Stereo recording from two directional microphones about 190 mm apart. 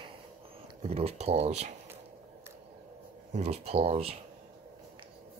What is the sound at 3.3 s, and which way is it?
Speech, 35° right (ahead or behind).